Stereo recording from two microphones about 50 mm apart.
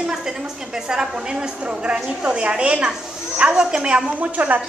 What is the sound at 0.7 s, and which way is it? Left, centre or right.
A woman's voice, centre.